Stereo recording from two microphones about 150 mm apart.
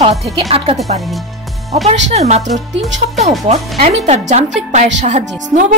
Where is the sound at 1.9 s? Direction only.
45° right (ahead or behind).